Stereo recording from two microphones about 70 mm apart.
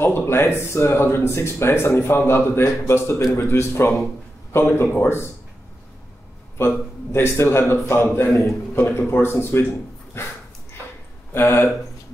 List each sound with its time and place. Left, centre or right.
0.0 s speech: left
6.6 s speech: left
11.3 s speech: left